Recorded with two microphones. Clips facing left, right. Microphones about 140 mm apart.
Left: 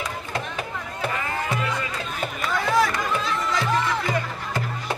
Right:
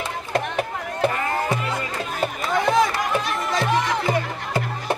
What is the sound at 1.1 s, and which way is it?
Music, 40° right (ahead or behind).